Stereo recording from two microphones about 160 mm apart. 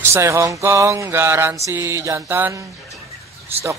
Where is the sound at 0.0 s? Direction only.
15° right (ahead or behind).